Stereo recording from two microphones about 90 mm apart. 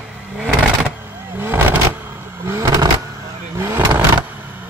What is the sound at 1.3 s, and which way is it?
Vehicle, 25° right (ahead or behind).